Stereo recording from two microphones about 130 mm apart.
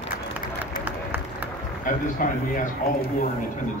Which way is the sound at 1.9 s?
90° left.